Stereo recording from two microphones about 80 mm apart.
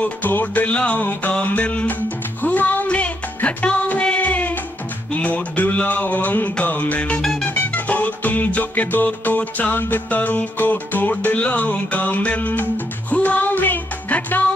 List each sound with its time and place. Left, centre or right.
0.0 s music: left
7.5 s music: centre